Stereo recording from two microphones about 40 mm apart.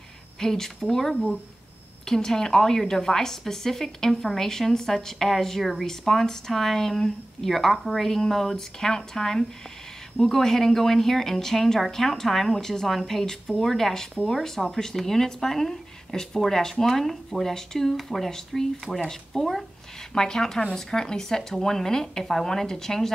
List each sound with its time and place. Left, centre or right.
0.4 s a woman's voice: centre